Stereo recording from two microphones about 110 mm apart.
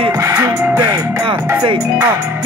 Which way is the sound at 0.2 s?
30° right (ahead or behind).